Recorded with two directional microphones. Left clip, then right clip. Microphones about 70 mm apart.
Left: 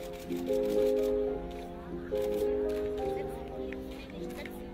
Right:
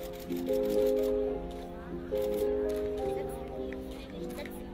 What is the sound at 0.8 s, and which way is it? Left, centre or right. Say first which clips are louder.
Music: even; right.